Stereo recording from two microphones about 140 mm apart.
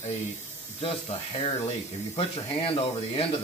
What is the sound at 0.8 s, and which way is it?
Speech, 45° left (ahead or behind).